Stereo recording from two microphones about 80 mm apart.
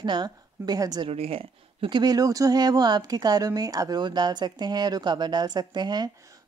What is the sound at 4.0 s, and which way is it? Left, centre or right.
Speech, right.